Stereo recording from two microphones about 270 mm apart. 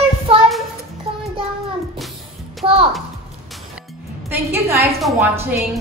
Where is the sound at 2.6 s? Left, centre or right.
Right.